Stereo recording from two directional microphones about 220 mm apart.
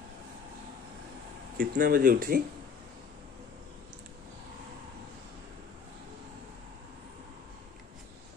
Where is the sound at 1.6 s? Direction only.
40° right (ahead or behind).